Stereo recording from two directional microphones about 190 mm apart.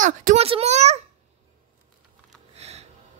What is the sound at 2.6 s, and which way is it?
Music, 35° right (ahead or behind).